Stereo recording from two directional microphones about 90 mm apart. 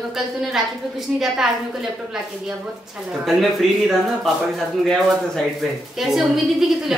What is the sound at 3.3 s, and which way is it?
Speech, centre (ahead or behind).